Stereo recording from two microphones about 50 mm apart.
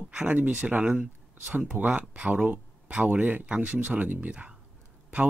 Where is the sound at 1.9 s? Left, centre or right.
Right.